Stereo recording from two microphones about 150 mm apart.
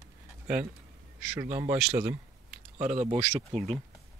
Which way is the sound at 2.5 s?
55° right (ahead or behind).